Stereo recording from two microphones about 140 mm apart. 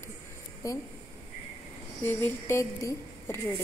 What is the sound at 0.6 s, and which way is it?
Speech, 25° left (ahead or behind).